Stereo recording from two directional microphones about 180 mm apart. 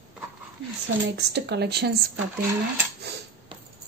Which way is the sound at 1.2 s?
70° right (ahead or behind).